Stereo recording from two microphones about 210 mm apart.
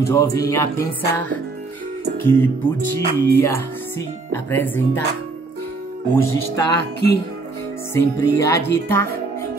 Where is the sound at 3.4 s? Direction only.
10° left (ahead or behind).